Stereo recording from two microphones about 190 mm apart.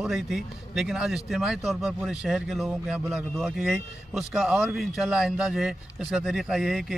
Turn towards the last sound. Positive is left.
turn(degrees=0)  # may be behind; listen again after turning